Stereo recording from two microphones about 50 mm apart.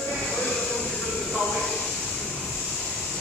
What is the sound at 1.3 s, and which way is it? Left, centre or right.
Train, centre.